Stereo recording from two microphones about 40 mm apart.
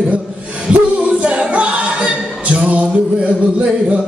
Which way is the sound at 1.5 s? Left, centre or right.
Right.